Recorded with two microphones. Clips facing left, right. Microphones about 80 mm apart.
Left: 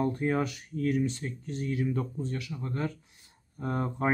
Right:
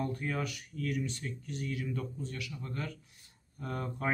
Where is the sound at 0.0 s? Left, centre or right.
Left.